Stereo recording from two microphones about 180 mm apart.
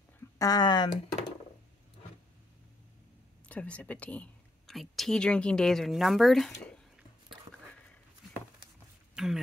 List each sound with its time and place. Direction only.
0.4 s speech: 20° left (ahead or behind)
3.4 s speech: 5° left (ahead or behind)
9.1 s a sound: centre (ahead or behind)